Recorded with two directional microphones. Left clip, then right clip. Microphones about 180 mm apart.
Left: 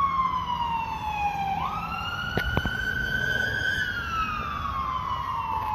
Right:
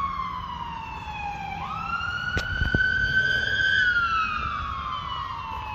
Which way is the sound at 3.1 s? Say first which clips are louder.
Right 4 dB; 5° right (ahead or behind).